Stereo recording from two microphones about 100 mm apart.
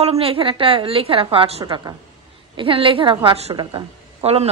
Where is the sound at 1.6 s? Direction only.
40° right (ahead or behind).